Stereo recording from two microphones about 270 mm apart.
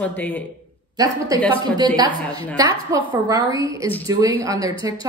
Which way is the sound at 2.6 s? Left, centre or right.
Centre.